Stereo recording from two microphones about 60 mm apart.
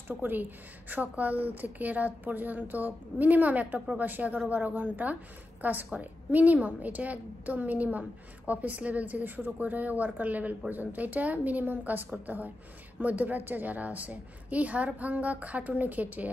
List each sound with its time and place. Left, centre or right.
0.1 s a woman's voice: right